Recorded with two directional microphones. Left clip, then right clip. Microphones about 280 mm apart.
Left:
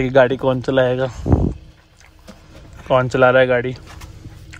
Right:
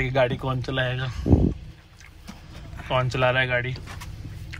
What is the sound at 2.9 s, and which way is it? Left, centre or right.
Speech, left.